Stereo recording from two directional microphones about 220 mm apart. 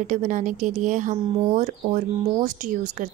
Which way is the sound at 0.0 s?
35° right (ahead or behind).